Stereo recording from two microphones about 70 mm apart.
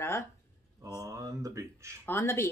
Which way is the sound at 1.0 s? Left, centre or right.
Right.